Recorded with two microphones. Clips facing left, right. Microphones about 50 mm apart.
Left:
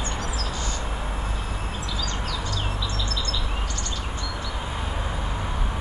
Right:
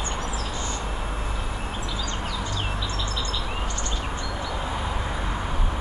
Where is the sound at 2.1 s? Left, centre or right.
Right.